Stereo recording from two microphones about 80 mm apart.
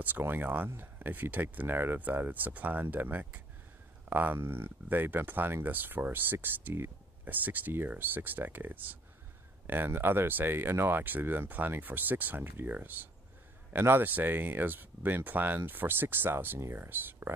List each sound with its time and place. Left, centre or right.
0.0 s speech: right